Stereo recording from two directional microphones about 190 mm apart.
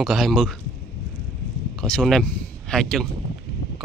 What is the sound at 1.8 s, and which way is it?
Speech, 5° left (ahead or behind).